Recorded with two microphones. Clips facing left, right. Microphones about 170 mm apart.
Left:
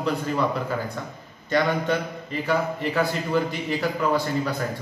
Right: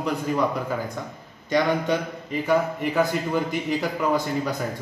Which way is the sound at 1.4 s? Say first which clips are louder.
Right 1 dB; 15° right (ahead or behind).